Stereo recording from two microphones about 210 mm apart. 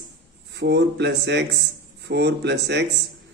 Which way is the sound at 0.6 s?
55° right (ahead or behind).